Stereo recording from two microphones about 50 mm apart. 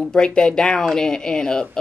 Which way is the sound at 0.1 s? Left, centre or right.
Centre.